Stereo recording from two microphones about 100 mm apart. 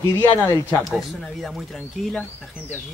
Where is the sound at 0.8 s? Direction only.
Centre (ahead or behind).